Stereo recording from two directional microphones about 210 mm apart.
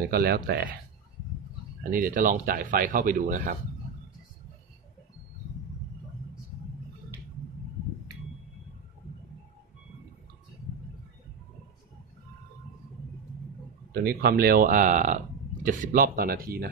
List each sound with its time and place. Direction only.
0.1 s speech: 45° right (ahead or behind)
1.8 s speech: 40° right (ahead or behind)
13.9 s speech: 50° right (ahead or behind)